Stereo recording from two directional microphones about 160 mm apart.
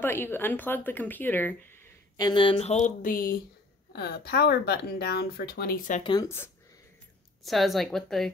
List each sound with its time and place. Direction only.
0.0 s speech: 15° left (ahead or behind)
2.1 s speech: 25° left (ahead or behind); by 3.3 s 60° left (ahead or behind)
3.9 s speech: 80° left
6.2 s speech: 15° left (ahead or behind)
7.4 s a woman's voice: centre (ahead or behind)